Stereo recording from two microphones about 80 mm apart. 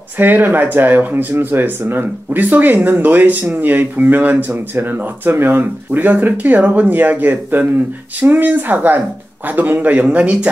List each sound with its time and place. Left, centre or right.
0.2 s speech: right